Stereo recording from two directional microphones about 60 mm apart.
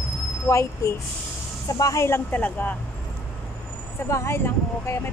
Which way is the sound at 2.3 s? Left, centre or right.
Left.